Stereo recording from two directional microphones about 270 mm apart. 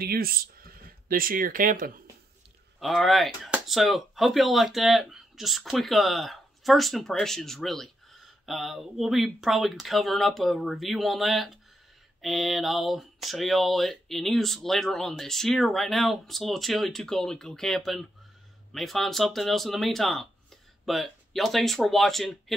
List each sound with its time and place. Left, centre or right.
0.0 s speech: right
2.8 s speech: centre